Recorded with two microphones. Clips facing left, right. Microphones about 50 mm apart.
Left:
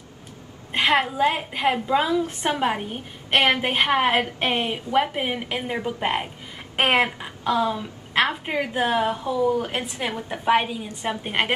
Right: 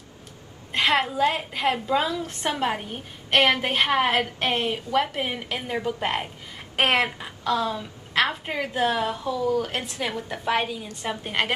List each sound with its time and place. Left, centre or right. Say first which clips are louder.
0.8 s a woman's voice: left 2 dB; centre